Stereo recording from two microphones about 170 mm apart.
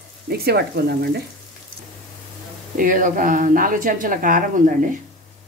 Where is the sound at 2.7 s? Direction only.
50° right (ahead or behind).